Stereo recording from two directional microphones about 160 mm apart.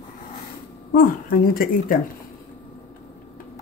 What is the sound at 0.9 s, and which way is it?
Speech, 65° left (ahead or behind).